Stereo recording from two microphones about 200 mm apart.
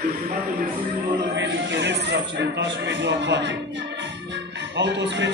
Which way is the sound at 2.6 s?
60° right (ahead or behind).